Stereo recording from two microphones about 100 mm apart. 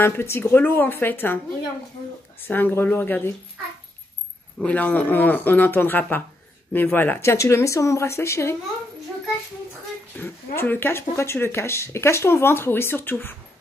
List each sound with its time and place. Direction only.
0.0 s speech: 25° left (ahead or behind)
2.4 s speech: 20° left (ahead or behind)
4.6 s speech: 15° left (ahead or behind)
10.1 s speech: 25° left (ahead or behind)